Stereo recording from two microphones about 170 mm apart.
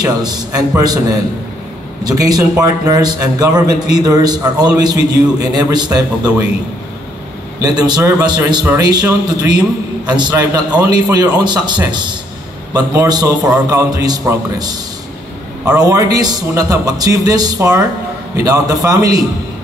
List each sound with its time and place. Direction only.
0.0 s a man's voice: 20° right (ahead or behind)
7.6 s a man's voice: 25° right (ahead or behind)